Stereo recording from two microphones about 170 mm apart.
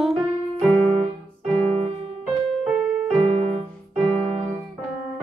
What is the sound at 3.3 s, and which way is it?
Keyboard, 35° right (ahead or behind).